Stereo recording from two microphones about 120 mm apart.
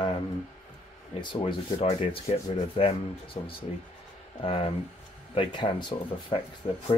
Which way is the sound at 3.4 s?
70° left (ahead or behind).